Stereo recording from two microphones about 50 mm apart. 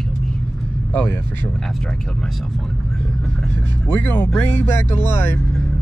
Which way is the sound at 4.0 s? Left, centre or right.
Left.